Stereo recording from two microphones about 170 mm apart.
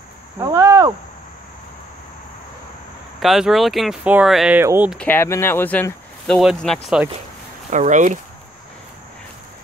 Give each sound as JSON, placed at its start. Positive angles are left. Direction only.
{"t": 0.4, "sound": "speech", "side_deg": -15}
{"t": 3.2, "sound": "speech", "side_deg": 0}
{"t": 4.9, "sound": "speech", "side_deg": 10}
{"t": 7.7, "sound": "speech", "side_deg": -45}